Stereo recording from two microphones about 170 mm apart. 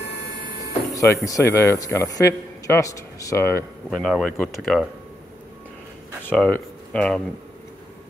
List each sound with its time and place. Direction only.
0.9 s a man's voice: 20° left (ahead or behind)
3.9 s speech: centre (ahead or behind)
6.2 s speech: 10° left (ahead or behind)